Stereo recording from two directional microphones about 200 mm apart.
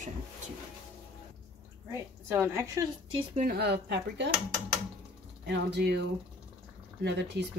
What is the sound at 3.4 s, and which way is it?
Speech, 50° right (ahead or behind).